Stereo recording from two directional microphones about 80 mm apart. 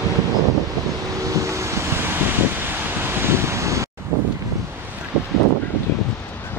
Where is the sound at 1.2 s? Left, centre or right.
Right.